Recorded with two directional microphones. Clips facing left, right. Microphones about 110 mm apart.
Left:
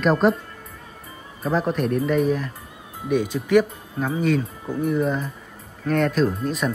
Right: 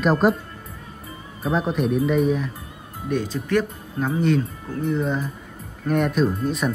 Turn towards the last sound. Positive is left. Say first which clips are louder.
# right 1 dB
turn(degrees=0)  # may be behind; listen again after turning